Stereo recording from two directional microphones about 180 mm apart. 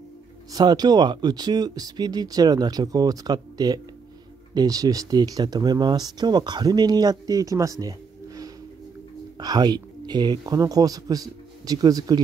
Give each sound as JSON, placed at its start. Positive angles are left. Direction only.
{"t": 0.5, "sound": "speech", "side_deg": -20}
{"t": 9.4, "sound": "speech", "side_deg": -20}